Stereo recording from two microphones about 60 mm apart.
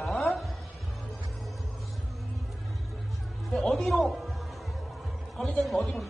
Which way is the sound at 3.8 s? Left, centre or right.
Centre.